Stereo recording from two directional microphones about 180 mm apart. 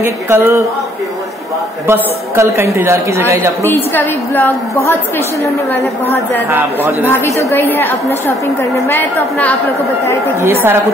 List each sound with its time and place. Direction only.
0.0 s a woman's voice: 15° right (ahead or behind)
1.9 s a woman's voice: 15° right (ahead or behind)
3.6 s a woman's voice: 10° left (ahead or behind)
6.5 s a woman's voice: 10° right (ahead or behind)
7.1 s a woman's voice: 15° left (ahead or behind)
10.4 s a woman's voice: 10° right (ahead or behind)